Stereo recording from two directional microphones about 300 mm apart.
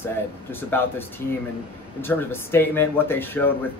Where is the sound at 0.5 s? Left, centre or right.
Centre.